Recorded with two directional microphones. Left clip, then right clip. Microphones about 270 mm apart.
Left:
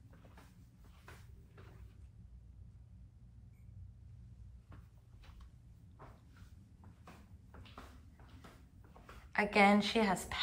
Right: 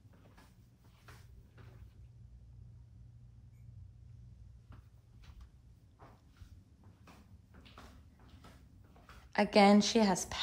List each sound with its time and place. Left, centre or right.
9.3 s a woman's voice: right